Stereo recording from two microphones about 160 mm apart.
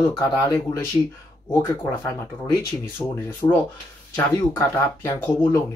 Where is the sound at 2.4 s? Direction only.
15° left (ahead or behind).